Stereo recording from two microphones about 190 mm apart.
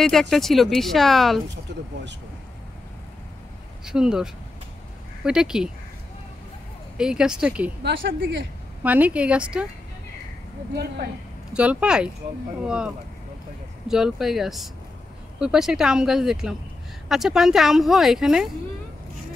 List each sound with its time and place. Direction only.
0.0 s speech: centre (ahead or behind)
1.7 s speech: 65° right (ahead or behind)
3.8 s speech: 5° right (ahead or behind)
7.0 s speech: 5° right (ahead or behind)
8.2 s speech: 70° right (ahead or behind)
8.8 s speech: 5° right (ahead or behind)
11.5 s speech: 5° right (ahead or behind)